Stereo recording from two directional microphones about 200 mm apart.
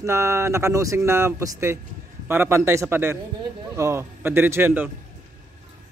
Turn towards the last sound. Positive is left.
turn(degrees=-10)  # may be behind; listen again after turning